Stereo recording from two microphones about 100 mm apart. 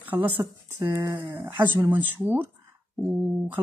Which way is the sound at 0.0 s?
15° right (ahead or behind).